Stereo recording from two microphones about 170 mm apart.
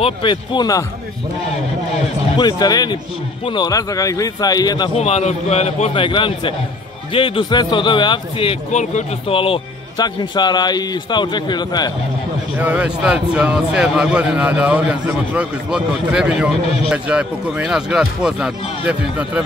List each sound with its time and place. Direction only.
0.0 s a man's voice: 30° left (ahead or behind)
2.3 s a man's voice: 25° left (ahead or behind)
4.9 s a man's voice: 40° left (ahead or behind)
12.5 s a man's voice: 10° right (ahead or behind)